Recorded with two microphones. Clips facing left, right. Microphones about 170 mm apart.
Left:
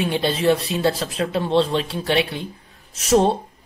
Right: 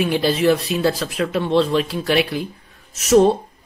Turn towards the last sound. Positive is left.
turn(degrees=30)  # may be behind; listen again after turning